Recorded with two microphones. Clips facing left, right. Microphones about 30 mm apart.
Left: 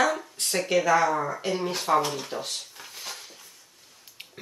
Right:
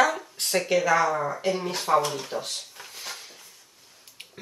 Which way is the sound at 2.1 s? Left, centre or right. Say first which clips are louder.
Right 1 dB; centre.